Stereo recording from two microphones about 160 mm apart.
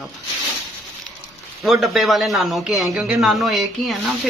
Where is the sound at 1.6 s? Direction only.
Centre (ahead or behind).